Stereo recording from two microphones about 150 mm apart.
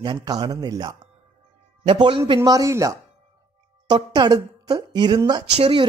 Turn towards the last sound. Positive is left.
turn(degrees=-35)  # may be behind; listen again after turning